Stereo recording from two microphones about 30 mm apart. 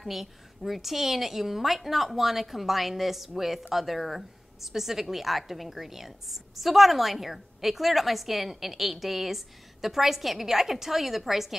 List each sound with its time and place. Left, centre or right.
0.0 s a woman's voice: centre